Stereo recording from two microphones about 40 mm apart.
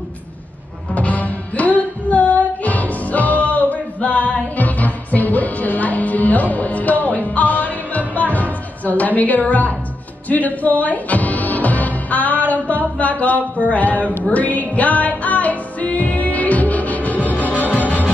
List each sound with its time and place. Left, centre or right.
0.9 s music: left
13.7 s a man's voice: left
14.3 s music: left